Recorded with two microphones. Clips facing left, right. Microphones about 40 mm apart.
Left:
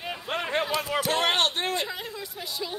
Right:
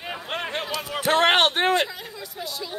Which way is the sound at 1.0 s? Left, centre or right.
Right.